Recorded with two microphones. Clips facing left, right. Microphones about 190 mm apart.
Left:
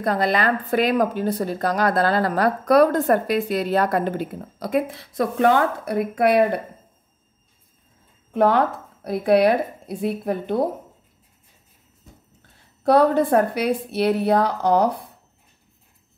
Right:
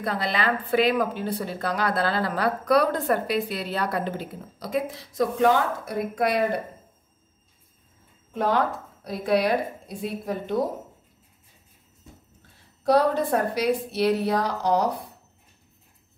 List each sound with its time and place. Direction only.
0.0 s a woman's voice: 45° left (ahead or behind)
8.3 s a woman's voice: 55° left (ahead or behind)
12.8 s a woman's voice: 55° left (ahead or behind)